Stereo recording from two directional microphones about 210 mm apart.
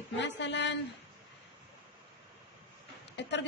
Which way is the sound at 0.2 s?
55° left (ahead or behind).